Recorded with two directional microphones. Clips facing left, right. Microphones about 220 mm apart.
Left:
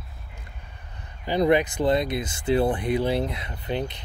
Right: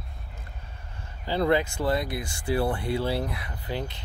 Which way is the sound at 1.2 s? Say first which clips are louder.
Left 3 dB; 15° left (ahead or behind).